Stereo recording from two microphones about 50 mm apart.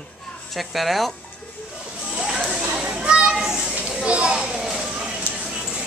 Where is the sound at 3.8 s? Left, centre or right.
Right.